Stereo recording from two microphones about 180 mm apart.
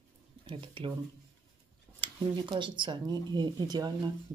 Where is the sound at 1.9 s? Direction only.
25° right (ahead or behind).